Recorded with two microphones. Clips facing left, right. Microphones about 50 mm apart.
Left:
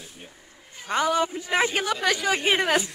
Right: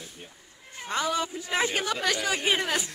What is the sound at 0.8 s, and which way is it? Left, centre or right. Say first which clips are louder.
Speech: left 5 dB; centre.